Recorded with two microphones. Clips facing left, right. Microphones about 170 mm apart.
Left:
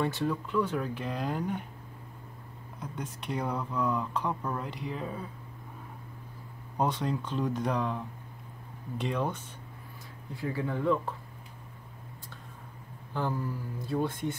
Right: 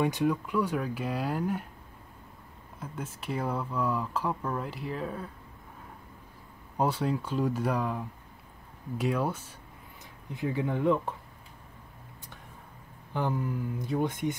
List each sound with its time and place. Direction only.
0.0 s speech: 15° right (ahead or behind)
2.8 s speech: 5° right (ahead or behind)
6.8 s speech: 10° right (ahead or behind)
10.3 s speech: 20° right (ahead or behind)
13.1 s speech: 15° right (ahead or behind)